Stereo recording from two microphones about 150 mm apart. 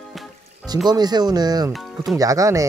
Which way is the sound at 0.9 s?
25° right (ahead or behind).